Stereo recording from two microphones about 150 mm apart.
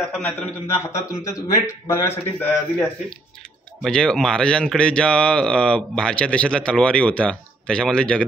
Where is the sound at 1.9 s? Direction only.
20° left (ahead or behind).